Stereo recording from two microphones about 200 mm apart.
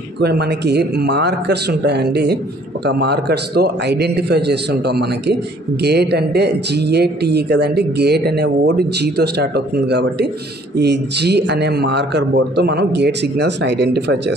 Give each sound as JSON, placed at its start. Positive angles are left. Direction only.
{"t": 0.2, "sound": "a man's voice", "side_deg": -55}